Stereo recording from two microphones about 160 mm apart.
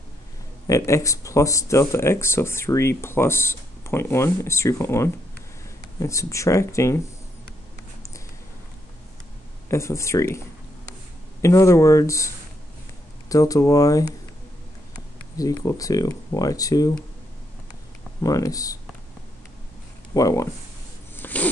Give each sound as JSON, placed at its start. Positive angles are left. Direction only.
{"t": 0.7, "sound": "speech", "side_deg": 20}
{"t": 9.7, "sound": "speech", "side_deg": 15}
{"t": 11.4, "sound": "speech", "side_deg": 20}
{"t": 13.3, "sound": "speech", "side_deg": 20}
{"t": 15.3, "sound": "speech", "side_deg": 20}
{"t": 18.2, "sound": "speech", "side_deg": 20}
{"t": 20.2, "sound": "speech", "side_deg": 20}
{"t": 21.2, "sound": "a sound", "side_deg": 10}